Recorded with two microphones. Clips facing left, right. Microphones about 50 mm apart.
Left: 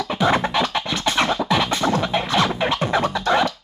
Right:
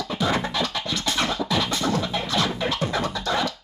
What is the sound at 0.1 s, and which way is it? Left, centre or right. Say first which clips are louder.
Scratching: left 6 dB; left.